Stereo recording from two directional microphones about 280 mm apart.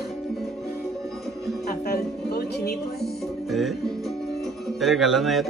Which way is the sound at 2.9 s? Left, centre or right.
Centre.